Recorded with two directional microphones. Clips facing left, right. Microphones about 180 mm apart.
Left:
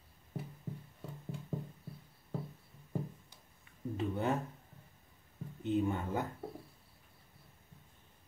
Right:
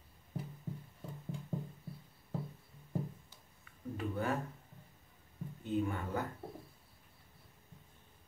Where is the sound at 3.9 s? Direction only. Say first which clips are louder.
Left 2 dB; 20° left (ahead or behind).